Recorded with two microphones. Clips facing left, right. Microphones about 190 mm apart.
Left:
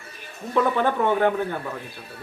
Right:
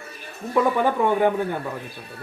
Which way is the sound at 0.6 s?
10° right (ahead or behind).